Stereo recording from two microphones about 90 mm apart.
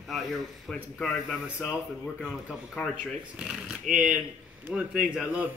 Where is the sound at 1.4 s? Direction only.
10° right (ahead or behind).